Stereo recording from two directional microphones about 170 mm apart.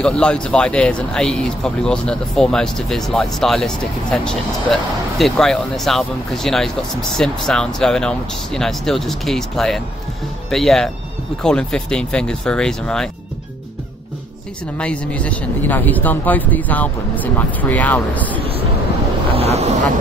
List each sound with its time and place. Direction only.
0.0 s speech: 5° left (ahead or behind)
14.8 s speech: 5° left (ahead or behind)
19.3 s speech: 40° right (ahead or behind)